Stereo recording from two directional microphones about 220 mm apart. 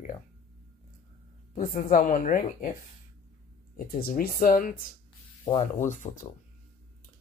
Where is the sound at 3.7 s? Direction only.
40° left (ahead or behind).